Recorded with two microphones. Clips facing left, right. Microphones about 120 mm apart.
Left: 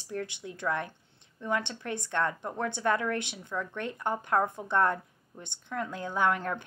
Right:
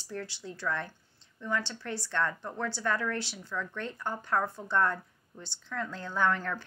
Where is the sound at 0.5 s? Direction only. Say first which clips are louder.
Left 2 dB; 15° left (ahead or behind).